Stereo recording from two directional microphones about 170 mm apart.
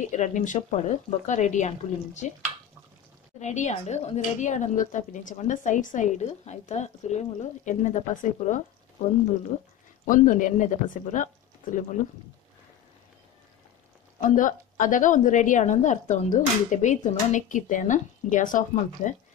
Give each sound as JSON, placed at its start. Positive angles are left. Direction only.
{"t": 0.1, "sound": "speech", "side_deg": 45}
{"t": 14.2, "sound": "speech", "side_deg": 50}